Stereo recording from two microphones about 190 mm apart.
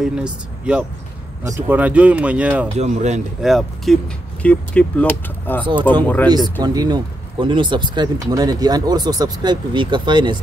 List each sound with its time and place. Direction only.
0.0 s speech: 5° right (ahead or behind)
2.7 s speech: 35° right (ahead or behind)
3.4 s speech: centre (ahead or behind)
6.6 s speech: 20° right (ahead or behind)